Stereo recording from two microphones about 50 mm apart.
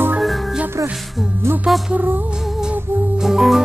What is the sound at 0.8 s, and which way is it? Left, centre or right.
Music, right.